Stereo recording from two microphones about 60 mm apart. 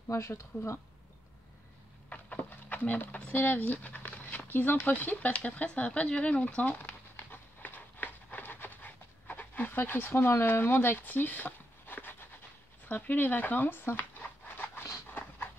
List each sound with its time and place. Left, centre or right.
0.1 s speech: left
2.0 s a sound: left
12.8 s speech: left
15.0 s dog: left